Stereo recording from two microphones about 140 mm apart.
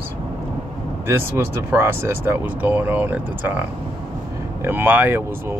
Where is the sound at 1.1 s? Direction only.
20° right (ahead or behind).